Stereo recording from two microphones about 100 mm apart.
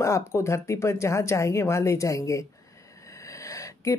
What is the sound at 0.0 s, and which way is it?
Speech, 30° left (ahead or behind).